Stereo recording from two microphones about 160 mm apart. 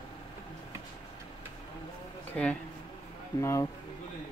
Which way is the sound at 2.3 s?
5° left (ahead or behind).